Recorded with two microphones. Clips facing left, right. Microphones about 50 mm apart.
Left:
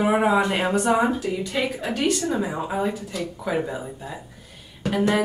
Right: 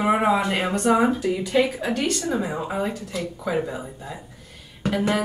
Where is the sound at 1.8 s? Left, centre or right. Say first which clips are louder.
Left 1 dB; centre.